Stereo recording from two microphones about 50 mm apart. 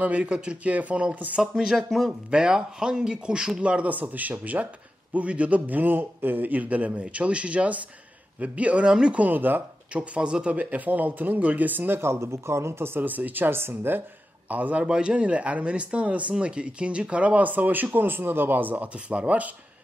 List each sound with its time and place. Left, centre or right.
0.2 s speech: right
1.3 s speech: centre
2.3 s speech: centre
9.2 s speech: right
9.9 s speech: right
12.0 s speech: right
13.0 s speech: right
13.6 s speech: right
14.5 s speech: right
14.9 s speech: centre